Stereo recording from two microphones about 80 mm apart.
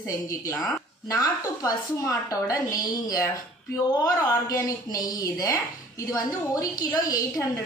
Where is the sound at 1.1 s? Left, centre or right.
Left.